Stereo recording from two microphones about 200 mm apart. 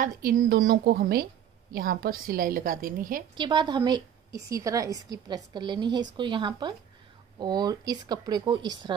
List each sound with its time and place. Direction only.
0.0 s a woman's voice: 45° right (ahead or behind)
3.3 s a woman's voice: 25° right (ahead or behind)